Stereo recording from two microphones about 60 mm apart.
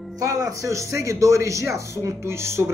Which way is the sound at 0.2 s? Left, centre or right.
Right.